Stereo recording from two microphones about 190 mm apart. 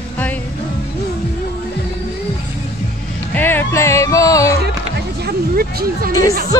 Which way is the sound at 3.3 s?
10° left (ahead or behind).